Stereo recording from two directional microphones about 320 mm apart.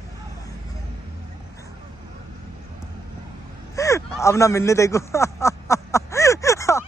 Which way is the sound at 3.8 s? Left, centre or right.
Centre.